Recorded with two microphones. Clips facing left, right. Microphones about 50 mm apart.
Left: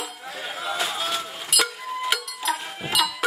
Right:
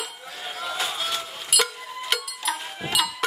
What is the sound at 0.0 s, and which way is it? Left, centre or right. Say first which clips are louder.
Chink: left 2 dB; centre.